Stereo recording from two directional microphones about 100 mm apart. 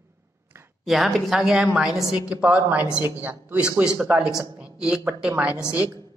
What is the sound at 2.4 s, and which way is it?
Speech, 15° right (ahead or behind).